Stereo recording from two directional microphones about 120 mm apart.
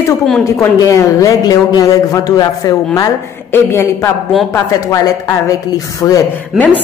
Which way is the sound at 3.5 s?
20° left (ahead or behind).